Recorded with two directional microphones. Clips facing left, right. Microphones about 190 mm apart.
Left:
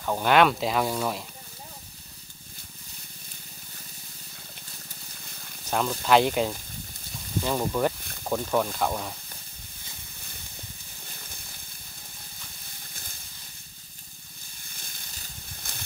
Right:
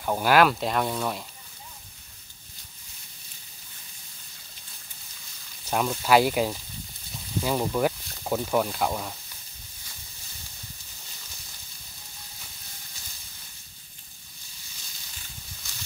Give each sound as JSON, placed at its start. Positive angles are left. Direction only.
{"t": 0.0, "sound": "speech", "side_deg": -10}
{"t": 5.7, "sound": "speech", "side_deg": -5}
{"t": 11.1, "sound": "water", "side_deg": 55}
{"t": 14.6, "sound": "a sound", "side_deg": 55}